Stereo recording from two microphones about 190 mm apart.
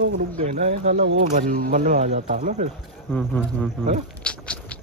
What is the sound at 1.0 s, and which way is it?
Speech, 50° right (ahead or behind).